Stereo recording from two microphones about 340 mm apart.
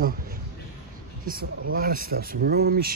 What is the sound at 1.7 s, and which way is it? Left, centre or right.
Speech, right.